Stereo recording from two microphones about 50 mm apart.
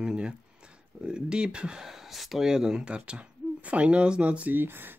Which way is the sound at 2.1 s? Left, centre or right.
Centre.